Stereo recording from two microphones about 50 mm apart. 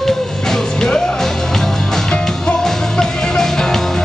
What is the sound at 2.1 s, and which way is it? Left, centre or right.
Music, centre.